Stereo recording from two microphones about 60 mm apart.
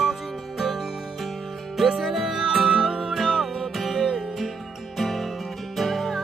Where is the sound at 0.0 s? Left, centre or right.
Centre.